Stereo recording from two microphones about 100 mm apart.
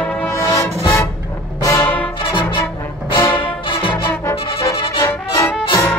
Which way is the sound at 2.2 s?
55° left (ahead or behind).